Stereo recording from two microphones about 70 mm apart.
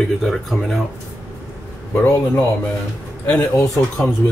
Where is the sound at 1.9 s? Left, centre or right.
Left.